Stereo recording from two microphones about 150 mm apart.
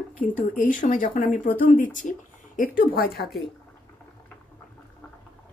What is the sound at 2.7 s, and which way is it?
Speech, 85° left.